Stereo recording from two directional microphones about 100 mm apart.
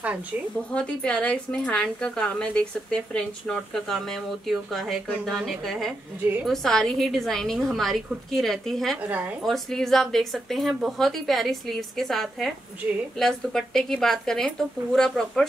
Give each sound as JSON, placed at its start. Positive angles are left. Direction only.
{"t": 0.7, "sound": "a woman's voice", "side_deg": 10}